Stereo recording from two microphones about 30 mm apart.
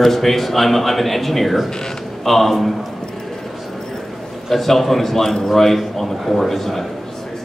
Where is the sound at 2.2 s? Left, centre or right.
Centre.